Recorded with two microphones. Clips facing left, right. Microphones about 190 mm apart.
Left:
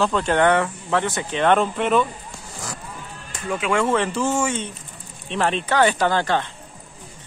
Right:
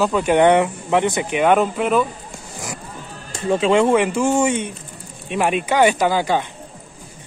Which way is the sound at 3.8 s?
15° right (ahead or behind).